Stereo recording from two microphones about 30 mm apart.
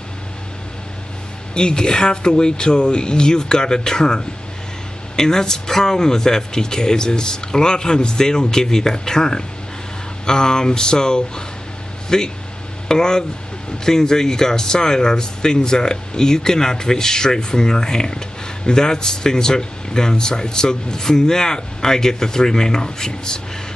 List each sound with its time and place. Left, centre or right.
1.5 s speech: left